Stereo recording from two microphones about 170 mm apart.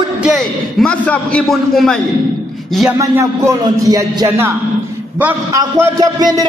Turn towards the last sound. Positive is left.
turn(degrees=-20)  # may be behind; listen again after turning